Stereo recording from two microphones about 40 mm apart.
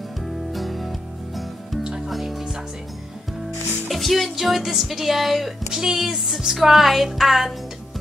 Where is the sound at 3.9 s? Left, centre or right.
Centre.